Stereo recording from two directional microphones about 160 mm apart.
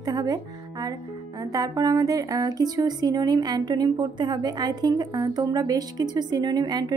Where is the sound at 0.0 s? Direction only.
25° right (ahead or behind).